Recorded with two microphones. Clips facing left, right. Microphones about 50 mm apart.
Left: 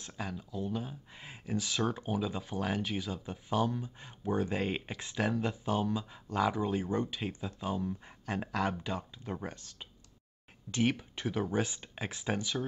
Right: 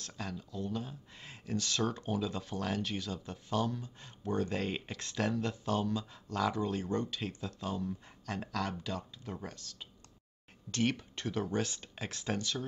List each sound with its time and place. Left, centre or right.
0.0 s speech: centre